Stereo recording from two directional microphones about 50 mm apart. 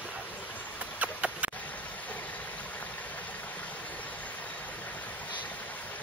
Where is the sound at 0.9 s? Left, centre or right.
Right.